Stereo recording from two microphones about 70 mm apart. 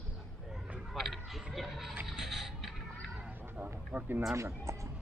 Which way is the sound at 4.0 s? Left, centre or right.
Right.